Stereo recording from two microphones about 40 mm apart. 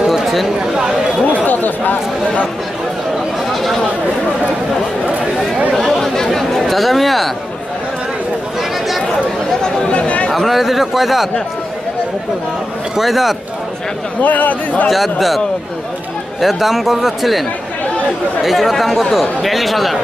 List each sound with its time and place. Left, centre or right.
0.1 s a sound: centre
0.6 s chatter: right
1.4 s speech: left
5.8 s chatter: centre
9.6 s chatter: centre
9.9 s chatter: left
10.3 s speech: centre
12.9 s a man's voice: centre
14.2 s a man's voice: left
14.9 s speech: centre